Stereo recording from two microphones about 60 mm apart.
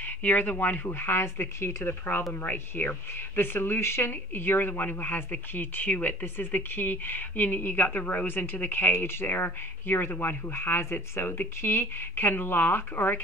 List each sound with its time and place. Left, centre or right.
0.0 s speech: left
1.9 s speech: left